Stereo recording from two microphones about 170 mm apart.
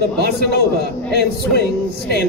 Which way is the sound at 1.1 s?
70° left (ahead or behind).